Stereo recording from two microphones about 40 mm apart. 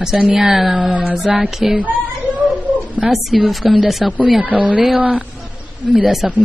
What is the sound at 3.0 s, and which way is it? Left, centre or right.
Speech, centre.